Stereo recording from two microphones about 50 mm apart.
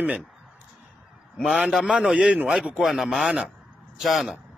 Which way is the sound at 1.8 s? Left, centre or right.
Centre.